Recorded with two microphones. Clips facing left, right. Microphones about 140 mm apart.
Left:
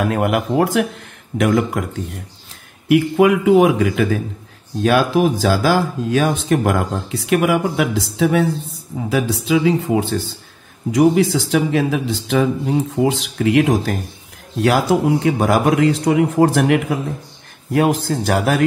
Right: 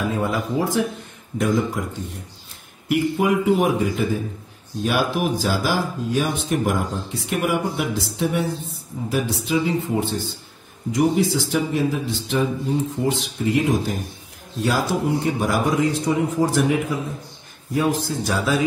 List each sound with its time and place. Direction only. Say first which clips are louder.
0.0 s speech: left 5 dB; 70° left (ahead or behind)
2.9 s a man's voice: left 6 dB; 90° left; by 18.7 s 65° left (ahead or behind)